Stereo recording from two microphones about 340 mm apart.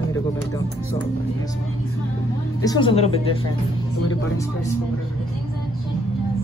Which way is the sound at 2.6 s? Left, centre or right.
Centre.